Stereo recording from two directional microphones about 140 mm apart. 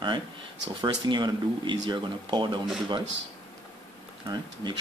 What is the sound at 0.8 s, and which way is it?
Speech, 30° right (ahead or behind).